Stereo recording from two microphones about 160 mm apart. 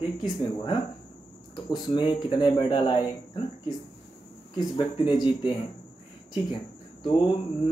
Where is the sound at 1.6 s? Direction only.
30° left (ahead or behind).